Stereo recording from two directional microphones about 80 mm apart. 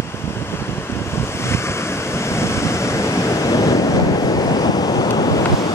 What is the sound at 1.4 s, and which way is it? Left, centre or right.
Waves, left.